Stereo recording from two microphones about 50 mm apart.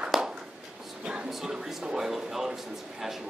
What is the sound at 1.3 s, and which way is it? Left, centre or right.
Speech, centre.